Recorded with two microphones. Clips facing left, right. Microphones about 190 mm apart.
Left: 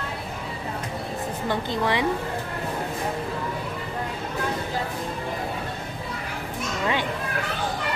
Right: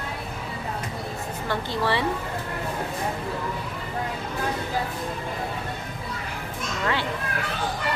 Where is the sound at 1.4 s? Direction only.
15° left (ahead or behind).